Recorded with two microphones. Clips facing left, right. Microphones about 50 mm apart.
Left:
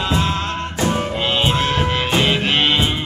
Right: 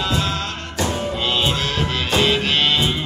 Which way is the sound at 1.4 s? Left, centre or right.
Left.